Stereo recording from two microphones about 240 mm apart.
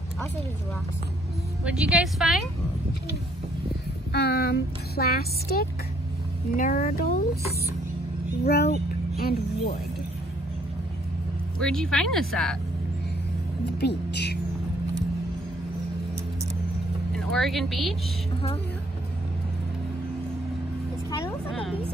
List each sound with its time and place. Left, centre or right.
1.6 s a woman's voice: centre
4.1 s speech: left
8.5 s speech: left
11.6 s a woman's voice: centre
13.7 s a woman's voice: left
17.1 s speech: centre
21.1 s speech: centre